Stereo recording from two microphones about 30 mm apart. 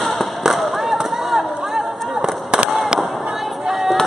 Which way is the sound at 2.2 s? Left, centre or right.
Right.